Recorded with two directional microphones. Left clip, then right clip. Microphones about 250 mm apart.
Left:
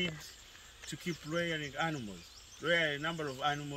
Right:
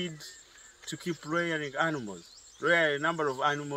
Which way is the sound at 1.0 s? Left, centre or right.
Centre.